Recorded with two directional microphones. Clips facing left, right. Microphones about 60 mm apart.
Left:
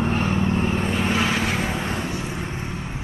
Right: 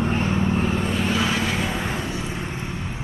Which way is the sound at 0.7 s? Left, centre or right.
Left.